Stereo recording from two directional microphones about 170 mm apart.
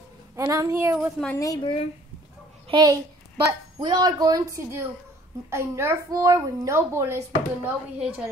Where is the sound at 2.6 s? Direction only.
25° right (ahead or behind); by 8.3 s 5° right (ahead or behind).